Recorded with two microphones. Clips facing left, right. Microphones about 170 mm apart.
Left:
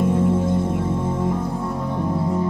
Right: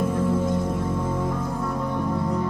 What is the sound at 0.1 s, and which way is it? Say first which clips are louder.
Music: left 4 dB; 25° left (ahead or behind).